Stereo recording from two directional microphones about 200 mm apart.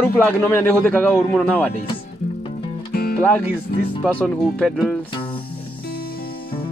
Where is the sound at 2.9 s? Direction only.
50° left (ahead or behind).